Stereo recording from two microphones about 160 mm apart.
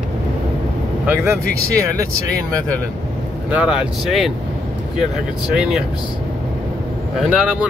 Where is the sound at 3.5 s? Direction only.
5° right (ahead or behind).